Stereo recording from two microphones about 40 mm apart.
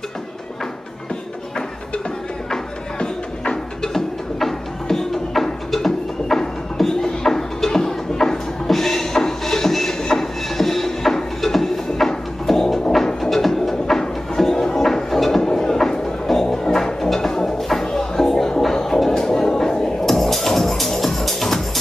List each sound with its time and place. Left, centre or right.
2.5 s music: centre
3.9 s music: centre
12.9 s a sound: centre
14.0 s music: centre